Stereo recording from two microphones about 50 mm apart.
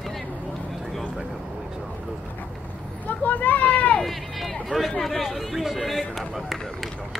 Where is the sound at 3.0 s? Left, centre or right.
Left.